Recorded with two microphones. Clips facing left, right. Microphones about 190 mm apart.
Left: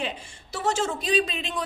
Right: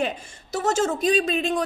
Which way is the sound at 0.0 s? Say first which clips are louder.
Right 5 dB; 45° right (ahead or behind).